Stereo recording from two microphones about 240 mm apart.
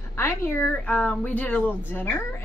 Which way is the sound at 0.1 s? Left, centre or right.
Centre.